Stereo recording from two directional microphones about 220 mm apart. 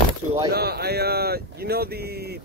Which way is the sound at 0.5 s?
45° right (ahead or behind).